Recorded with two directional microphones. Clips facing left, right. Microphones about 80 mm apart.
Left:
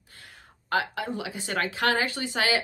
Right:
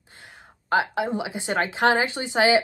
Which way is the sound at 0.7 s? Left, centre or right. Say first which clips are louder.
Right 5 dB; right.